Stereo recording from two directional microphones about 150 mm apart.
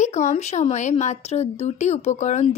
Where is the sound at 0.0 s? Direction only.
50° left (ahead or behind).